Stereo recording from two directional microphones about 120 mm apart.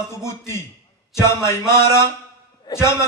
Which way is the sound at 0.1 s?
25° left (ahead or behind).